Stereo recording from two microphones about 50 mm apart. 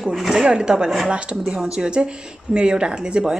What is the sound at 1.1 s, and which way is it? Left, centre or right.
A woman's voice, right.